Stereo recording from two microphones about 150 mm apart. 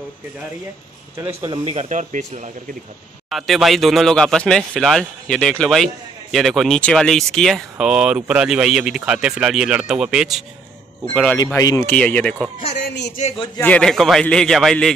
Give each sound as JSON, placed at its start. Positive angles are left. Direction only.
{"t": 1.1, "sound": "speech", "side_deg": -15}
{"t": 1.5, "sound": "speech", "side_deg": -40}
{"t": 3.3, "sound": "speech", "side_deg": 0}
{"t": 11.3, "sound": "speech", "side_deg": 25}
{"t": 11.9, "sound": "speech", "side_deg": 10}
{"t": 13.6, "sound": "speech", "side_deg": 10}